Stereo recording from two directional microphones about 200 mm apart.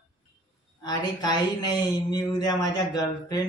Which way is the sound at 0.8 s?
20° left (ahead or behind).